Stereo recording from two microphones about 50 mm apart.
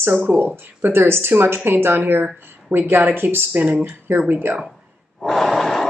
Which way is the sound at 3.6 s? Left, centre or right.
Right.